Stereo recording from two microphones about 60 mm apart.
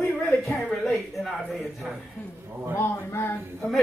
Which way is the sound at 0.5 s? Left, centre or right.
Centre.